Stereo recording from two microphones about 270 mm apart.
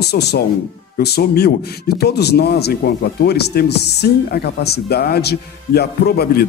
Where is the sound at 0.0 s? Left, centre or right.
Left.